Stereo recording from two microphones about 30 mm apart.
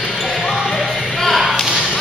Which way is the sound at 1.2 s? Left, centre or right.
Centre.